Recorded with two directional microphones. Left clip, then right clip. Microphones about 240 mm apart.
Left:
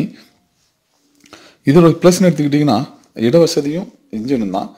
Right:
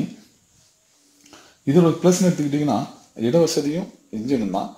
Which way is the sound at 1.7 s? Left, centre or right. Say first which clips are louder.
Left 7 dB; left.